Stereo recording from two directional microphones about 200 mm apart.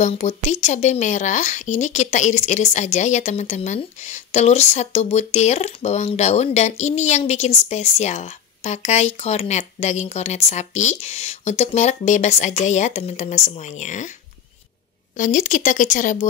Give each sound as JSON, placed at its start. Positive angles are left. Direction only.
{"t": 0.0, "sound": "speech", "side_deg": 35}
{"t": 15.1, "sound": "speech", "side_deg": 40}